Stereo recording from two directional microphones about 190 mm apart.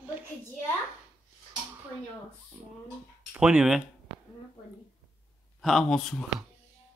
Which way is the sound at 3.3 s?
5° right (ahead or behind).